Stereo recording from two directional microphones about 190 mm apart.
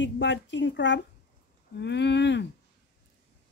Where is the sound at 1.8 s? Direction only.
65° left (ahead or behind).